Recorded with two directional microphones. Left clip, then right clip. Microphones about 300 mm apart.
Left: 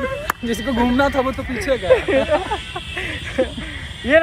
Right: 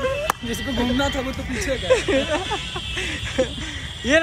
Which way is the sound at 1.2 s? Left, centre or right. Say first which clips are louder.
Left 5 dB; centre.